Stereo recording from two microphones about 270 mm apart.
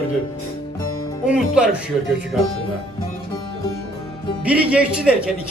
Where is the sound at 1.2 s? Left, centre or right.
Centre.